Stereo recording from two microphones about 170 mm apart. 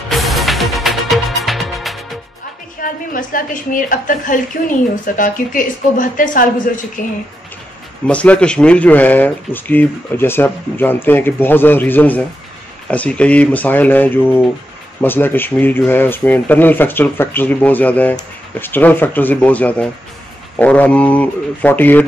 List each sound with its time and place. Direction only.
0.1 s music: centre (ahead or behind)
2.8 s a woman's voice: 55° left (ahead or behind)
8.1 s speech: 10° left (ahead or behind)